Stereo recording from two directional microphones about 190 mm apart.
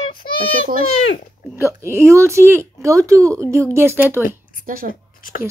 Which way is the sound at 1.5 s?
15° right (ahead or behind).